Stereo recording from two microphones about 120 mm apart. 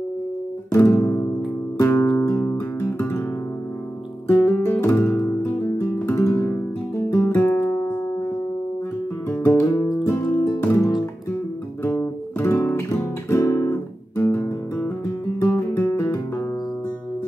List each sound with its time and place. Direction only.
0.7 s music: 25° left (ahead or behind)
4.3 s music: 20° left (ahead or behind)
9.3 s music: 20° left (ahead or behind)
13.3 s guitar: 25° left (ahead or behind)
15.7 s music: 20° left (ahead or behind)